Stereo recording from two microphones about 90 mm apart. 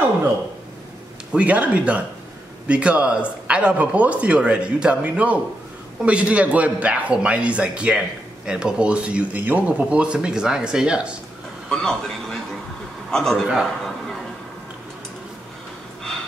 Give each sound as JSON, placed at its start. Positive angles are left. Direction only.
{"t": 1.3, "sound": "speech", "side_deg": -15}
{"t": 11.7, "sound": "a man's voice", "side_deg": 5}
{"t": 13.5, "sound": "a man's voice", "side_deg": -5}